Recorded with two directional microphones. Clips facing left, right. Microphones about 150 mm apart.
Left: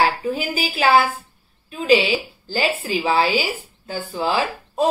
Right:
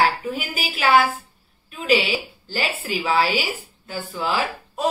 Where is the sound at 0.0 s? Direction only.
30° left (ahead or behind).